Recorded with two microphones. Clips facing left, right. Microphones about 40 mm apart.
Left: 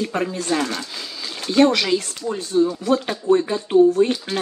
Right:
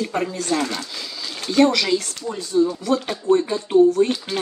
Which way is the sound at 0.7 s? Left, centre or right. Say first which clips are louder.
Left 1 dB; centre.